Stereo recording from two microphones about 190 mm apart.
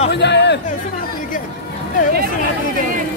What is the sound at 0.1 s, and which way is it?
Chatter, 65° left (ahead or behind).